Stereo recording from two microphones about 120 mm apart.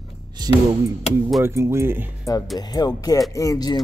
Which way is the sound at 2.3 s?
30° left (ahead or behind).